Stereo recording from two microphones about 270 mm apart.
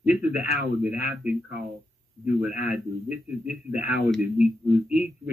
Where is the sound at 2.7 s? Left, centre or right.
Centre.